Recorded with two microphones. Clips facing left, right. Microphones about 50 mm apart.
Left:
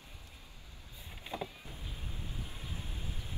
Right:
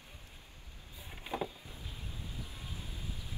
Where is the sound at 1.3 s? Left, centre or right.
Right.